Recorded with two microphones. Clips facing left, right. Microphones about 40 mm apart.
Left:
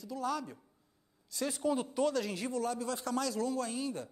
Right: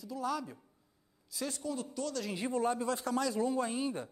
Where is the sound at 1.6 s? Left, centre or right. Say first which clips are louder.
Left 9 dB; left.